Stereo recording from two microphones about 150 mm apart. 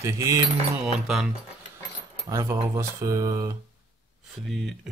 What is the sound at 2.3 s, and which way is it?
Speech, 20° right (ahead or behind).